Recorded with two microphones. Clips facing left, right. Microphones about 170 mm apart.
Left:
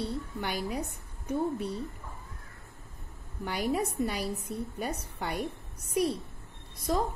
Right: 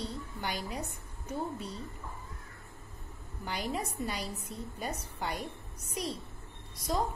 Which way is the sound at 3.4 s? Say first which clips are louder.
Left 6 dB; 55° left (ahead or behind).